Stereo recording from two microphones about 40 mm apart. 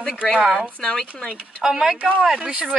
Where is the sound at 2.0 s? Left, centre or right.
Right.